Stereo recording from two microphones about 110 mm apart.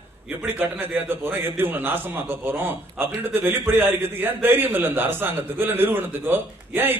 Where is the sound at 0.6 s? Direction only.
20° right (ahead or behind).